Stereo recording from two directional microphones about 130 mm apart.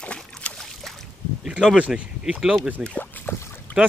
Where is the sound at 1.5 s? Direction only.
10° right (ahead or behind).